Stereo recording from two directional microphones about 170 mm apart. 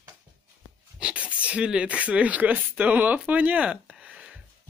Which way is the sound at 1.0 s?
5° right (ahead or behind).